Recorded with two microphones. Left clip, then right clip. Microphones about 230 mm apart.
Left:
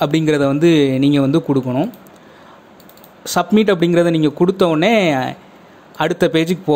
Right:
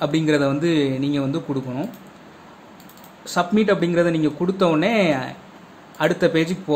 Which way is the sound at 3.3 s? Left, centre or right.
Left.